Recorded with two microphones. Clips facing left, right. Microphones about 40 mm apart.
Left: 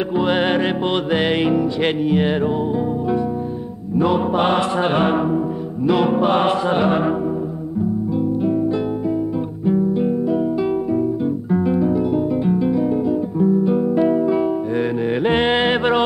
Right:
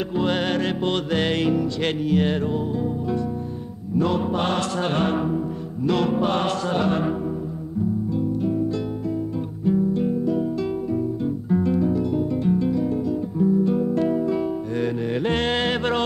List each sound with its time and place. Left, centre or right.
0.1 s music: left
3.9 s music: centre
9.7 s guitar: centre
11.5 s guitar: centre